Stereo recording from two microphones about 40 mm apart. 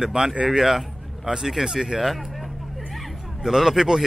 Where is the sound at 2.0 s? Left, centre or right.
Centre.